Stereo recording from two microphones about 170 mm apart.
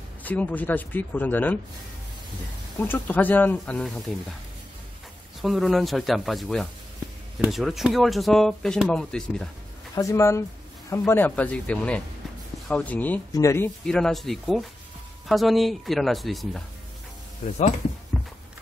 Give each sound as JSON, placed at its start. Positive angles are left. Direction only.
{"t": 0.2, "sound": "speech", "side_deg": 10}
{"t": 2.8, "sound": "speech", "side_deg": 10}
{"t": 5.4, "sound": "speech", "side_deg": 0}
{"t": 9.9, "sound": "speech", "side_deg": 15}
{"t": 13.8, "sound": "speech", "side_deg": 5}